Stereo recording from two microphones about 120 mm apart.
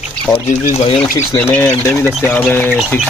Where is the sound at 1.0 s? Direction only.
15° left (ahead or behind).